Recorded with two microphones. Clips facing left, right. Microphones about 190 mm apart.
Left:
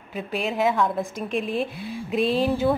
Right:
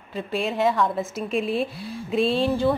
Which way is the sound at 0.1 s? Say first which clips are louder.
Right 1 dB; centre (ahead or behind).